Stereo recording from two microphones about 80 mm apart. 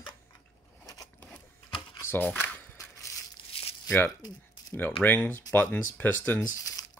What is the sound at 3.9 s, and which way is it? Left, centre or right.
Speech, left.